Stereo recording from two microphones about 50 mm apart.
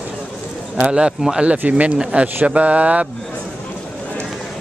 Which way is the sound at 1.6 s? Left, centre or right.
Right.